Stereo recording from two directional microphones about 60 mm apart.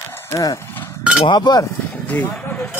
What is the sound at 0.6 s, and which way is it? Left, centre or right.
Cowbell, left.